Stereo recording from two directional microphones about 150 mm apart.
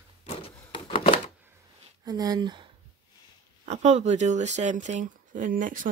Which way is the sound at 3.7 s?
50° right (ahead or behind).